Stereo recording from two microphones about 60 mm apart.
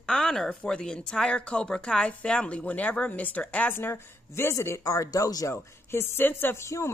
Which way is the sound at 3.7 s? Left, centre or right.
Left.